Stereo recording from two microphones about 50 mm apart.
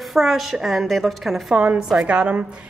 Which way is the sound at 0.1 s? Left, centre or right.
Centre.